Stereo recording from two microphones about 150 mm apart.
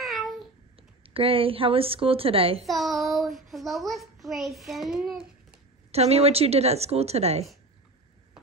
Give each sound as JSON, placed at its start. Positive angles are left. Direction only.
{"t": 0.0, "sound": "babbling", "side_deg": 0}
{"t": 0.7, "sound": "a woman's voice", "side_deg": -40}
{"t": 2.6, "sound": "a child's voice", "side_deg": 0}
{"t": 5.9, "sound": "speech", "side_deg": -45}